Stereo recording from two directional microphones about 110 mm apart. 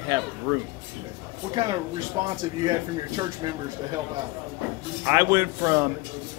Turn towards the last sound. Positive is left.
turn(degrees=-25)  # may be behind; listen again after turning